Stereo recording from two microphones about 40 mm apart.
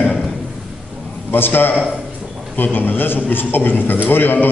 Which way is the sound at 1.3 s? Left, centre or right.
Left.